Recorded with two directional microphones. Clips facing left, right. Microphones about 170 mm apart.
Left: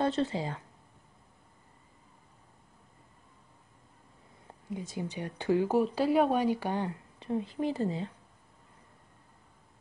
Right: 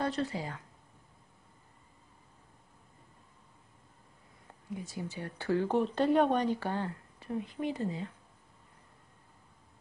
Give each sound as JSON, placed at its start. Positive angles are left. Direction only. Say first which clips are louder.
{"t": 0.0, "sound": "speech", "louder": "left 4 dB", "side_deg": 25}
{"t": 4.7, "sound": "speech", "louder": "left 3 dB", "side_deg": 20}